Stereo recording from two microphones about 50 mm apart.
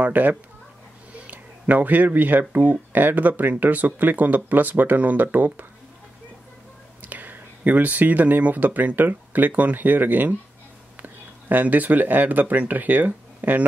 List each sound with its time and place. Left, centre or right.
0.0 s speech: right
7.1 s speech: right